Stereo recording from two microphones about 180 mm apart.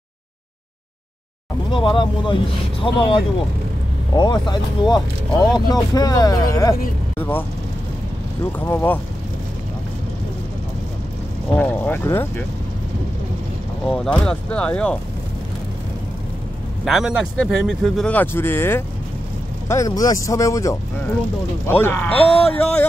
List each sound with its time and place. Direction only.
1.7 s speech: 25° left (ahead or behind); by 7.4 s 10° left (ahead or behind)
8.5 s speech: 10° left (ahead or behind)
11.5 s speech: 10° left (ahead or behind)
13.8 s speech: 5° left (ahead or behind)
16.8 s speech: 5° right (ahead or behind)